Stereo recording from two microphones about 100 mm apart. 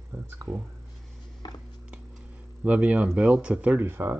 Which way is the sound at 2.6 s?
15° right (ahead or behind).